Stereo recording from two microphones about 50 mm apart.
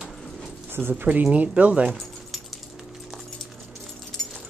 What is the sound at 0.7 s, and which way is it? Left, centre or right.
Speech, right.